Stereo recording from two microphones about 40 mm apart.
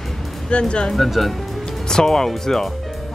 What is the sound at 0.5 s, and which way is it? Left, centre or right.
Speech, left.